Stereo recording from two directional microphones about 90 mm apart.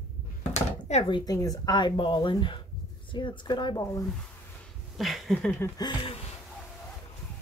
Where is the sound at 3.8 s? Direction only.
35° left (ahead or behind).